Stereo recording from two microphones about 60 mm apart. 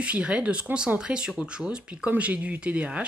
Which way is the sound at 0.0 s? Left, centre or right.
Centre.